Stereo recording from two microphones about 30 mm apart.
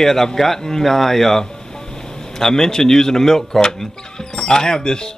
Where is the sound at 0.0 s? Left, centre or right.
Centre.